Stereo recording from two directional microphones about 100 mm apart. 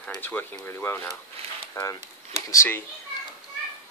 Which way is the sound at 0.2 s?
20° left (ahead or behind).